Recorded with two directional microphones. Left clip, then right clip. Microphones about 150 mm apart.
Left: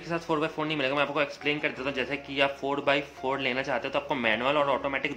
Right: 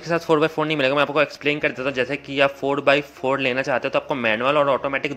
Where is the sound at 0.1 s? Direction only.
40° right (ahead or behind).